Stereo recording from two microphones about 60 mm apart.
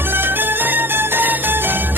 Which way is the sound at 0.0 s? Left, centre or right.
Right.